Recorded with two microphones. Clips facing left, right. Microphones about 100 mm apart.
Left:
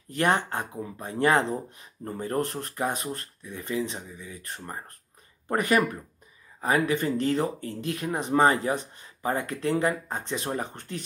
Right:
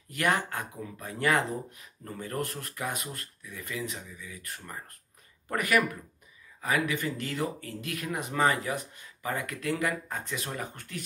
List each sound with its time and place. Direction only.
0.1 s speech: 30° left (ahead or behind)